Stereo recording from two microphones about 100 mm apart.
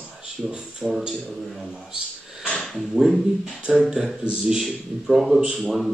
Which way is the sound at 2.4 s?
5° left (ahead or behind).